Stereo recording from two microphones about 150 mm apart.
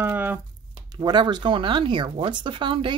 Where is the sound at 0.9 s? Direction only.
30° right (ahead or behind).